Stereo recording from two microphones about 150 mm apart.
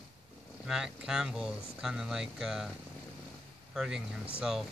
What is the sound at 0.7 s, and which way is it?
Speech, 5° right (ahead or behind).